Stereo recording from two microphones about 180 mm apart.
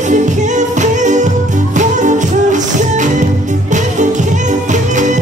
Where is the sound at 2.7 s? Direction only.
45° right (ahead or behind).